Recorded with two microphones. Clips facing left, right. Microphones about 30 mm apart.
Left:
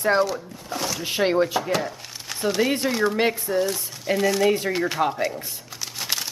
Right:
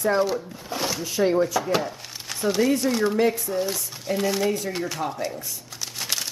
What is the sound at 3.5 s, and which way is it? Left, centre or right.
Speech, left.